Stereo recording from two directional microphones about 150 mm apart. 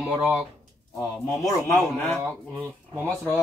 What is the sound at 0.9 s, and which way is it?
A man's voice, 15° left (ahead or behind).